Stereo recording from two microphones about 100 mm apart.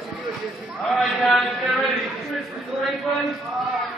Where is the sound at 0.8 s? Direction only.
Centre (ahead or behind).